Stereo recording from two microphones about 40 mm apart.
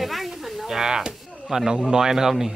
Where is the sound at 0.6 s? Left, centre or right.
Centre.